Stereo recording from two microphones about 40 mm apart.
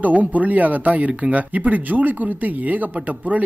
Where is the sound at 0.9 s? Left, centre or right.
Right.